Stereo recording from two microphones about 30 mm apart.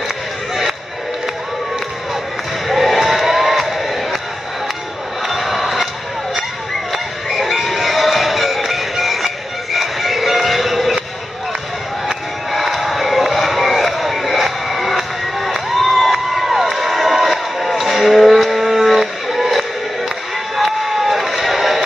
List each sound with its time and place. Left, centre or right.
2.7 s crowd: centre
3.6 s music: centre
5.2 s a sound: centre
6.9 s music: centre
12.4 s crowd: centre
18.9 s a sound: centre
20.5 s crowd: centre